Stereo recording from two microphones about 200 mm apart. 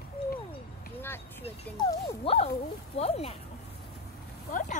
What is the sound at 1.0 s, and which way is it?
Vehicle, 10° left (ahead or behind).